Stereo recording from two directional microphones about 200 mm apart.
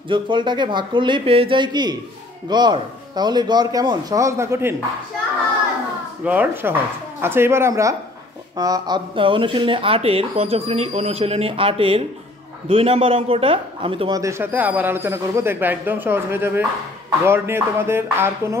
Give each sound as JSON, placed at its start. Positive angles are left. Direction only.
{"t": 0.1, "sound": "speech", "side_deg": -25}
{"t": 6.2, "sound": "speech", "side_deg": -10}